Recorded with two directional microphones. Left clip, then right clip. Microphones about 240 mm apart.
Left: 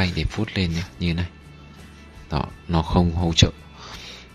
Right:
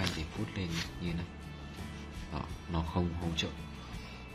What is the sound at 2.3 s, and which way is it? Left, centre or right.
Speech, left.